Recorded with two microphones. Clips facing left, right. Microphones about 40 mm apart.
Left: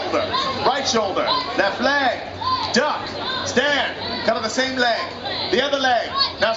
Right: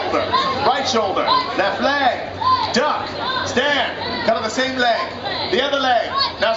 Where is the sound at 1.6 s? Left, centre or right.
Right.